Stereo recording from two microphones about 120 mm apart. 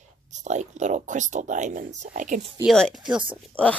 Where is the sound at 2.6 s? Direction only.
Centre (ahead or behind).